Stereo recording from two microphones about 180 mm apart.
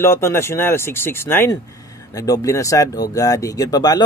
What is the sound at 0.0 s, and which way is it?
Speech, 15° left (ahead or behind).